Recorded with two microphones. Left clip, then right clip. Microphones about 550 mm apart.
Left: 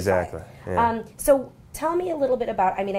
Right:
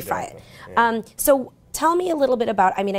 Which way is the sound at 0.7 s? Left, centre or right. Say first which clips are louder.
Right 3 dB; right.